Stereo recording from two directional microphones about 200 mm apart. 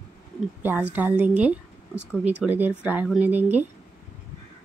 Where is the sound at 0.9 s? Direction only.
10° right (ahead or behind).